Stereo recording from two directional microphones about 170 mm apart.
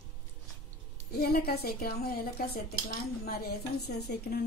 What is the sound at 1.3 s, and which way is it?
A woman's voice, 65° left (ahead or behind).